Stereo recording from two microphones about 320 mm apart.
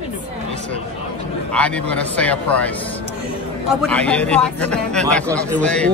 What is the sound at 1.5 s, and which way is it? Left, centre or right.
Speech, centre.